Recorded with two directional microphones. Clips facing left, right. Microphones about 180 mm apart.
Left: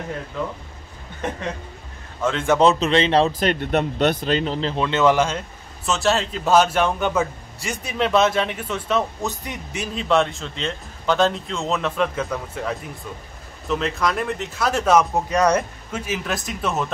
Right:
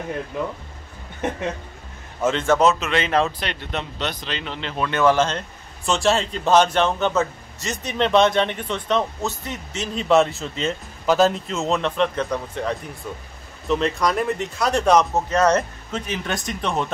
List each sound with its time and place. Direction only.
2.2 s a man's voice: 10° right (ahead or behind)
2.6 s speech: 30° left (ahead or behind)
4.7 s a man's voice: 20° left (ahead or behind)
5.9 s a man's voice: centre (ahead or behind)
9.9 s speech: centre (ahead or behind)